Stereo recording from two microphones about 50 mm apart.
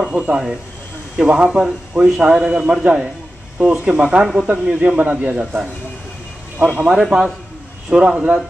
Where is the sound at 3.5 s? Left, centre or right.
Right; by 4.5 s centre.